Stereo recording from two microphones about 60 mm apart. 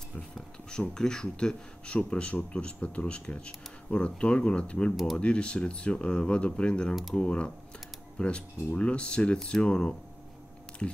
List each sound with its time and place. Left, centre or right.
0.7 s speech: centre